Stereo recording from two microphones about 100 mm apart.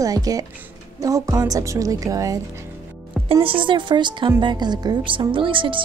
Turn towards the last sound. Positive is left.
turn(degrees=-55)  # may be behind; listen again after turning